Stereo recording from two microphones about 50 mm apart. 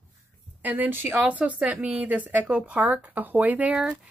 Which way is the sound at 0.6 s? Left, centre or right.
Right.